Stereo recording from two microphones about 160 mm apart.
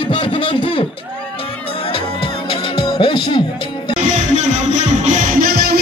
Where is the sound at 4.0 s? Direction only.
50° right (ahead or behind); by 5.7 s 70° right (ahead or behind).